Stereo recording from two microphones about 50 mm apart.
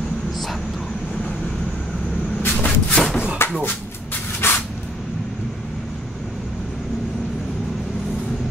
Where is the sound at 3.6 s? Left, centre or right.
Left.